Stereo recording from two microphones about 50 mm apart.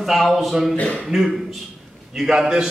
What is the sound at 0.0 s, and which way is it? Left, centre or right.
Speech, centre.